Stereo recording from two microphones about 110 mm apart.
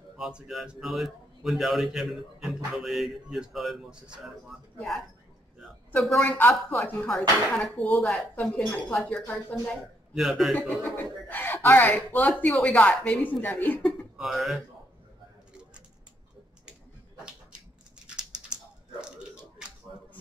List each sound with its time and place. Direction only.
0.2 s a man's voice: 5° right (ahead or behind)
5.9 s a man's voice: 5° left (ahead or behind)
6.7 s speech: 15° left (ahead or behind)
7.1 s a man's voice: 5° left (ahead or behind)
9.2 s speech: 15° left (ahead or behind)
10.1 s a man's voice: centre (ahead or behind)
10.8 s speech: 15° left (ahead or behind)
13.8 s speech: centre (ahead or behind)
18.9 s a sound: 5° right (ahead or behind)